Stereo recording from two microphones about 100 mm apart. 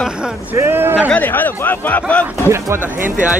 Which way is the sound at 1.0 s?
15° left (ahead or behind).